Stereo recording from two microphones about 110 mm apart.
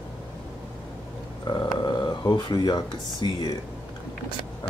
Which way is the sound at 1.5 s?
40° left (ahead or behind).